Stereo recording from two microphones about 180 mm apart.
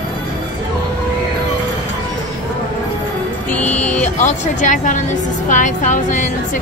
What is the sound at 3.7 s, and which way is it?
A woman's voice, 40° left (ahead or behind).